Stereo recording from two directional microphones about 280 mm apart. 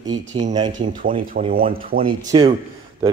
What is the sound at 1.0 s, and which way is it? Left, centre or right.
Speech, right.